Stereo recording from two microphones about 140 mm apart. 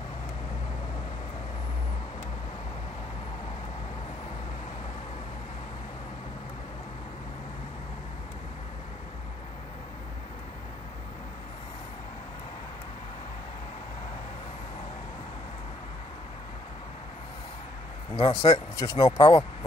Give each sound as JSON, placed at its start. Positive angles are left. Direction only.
{"t": 18.1, "sound": "speech", "side_deg": 40}
{"t": 18.5, "sound": "speech", "side_deg": 25}